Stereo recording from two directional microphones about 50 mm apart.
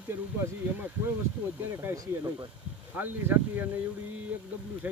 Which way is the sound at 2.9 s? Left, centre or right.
Right.